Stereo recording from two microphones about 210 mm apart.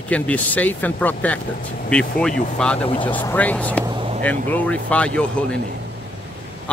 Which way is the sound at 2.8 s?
25° left (ahead or behind).